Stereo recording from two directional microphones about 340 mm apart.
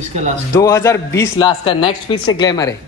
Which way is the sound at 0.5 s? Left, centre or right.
Centre.